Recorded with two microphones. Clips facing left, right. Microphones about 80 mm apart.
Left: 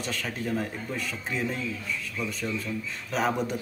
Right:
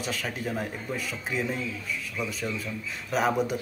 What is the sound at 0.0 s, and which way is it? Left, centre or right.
A man's voice, centre.